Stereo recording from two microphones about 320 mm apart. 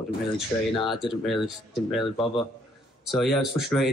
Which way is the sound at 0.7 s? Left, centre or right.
Centre.